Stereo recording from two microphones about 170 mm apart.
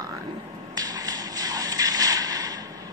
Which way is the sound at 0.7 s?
20° right (ahead or behind).